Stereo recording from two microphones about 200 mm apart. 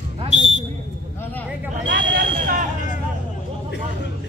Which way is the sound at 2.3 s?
35° right (ahead or behind).